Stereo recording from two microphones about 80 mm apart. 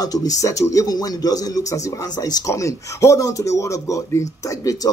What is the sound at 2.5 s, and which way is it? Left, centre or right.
Speech, left.